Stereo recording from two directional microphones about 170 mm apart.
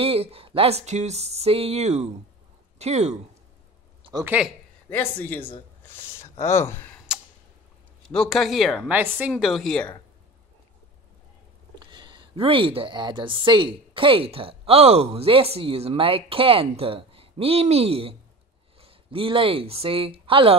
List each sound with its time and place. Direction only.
0.0 s a woman's voice: 35° right (ahead or behind)
4.2 s speech: 10° right (ahead or behind)
4.8 s speech: 10° left (ahead or behind)
8.1 s speech: centre (ahead or behind)
11.8 s a woman's voice: 25° right (ahead or behind)